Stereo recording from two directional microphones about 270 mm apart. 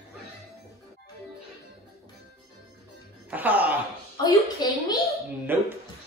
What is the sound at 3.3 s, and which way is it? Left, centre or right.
Speech, centre.